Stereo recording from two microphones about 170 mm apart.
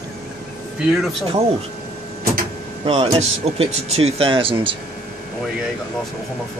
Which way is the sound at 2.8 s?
35° right (ahead or behind).